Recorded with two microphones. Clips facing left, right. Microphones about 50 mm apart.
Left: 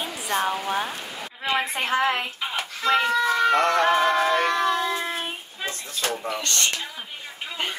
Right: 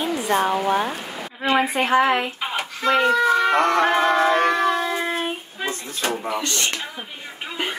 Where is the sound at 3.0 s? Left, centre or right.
Right.